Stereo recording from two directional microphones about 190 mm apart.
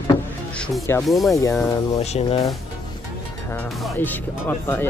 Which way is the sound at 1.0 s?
Centre (ahead or behind).